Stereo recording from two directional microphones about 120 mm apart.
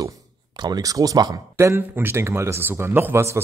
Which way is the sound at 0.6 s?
35° right (ahead or behind).